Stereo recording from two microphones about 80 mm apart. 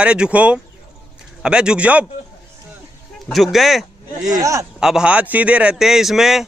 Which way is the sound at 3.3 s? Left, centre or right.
Centre.